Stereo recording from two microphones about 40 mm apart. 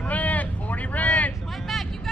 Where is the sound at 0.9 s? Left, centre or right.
Left.